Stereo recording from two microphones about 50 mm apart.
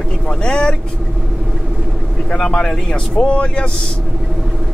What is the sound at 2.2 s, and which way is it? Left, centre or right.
Vehicle, centre.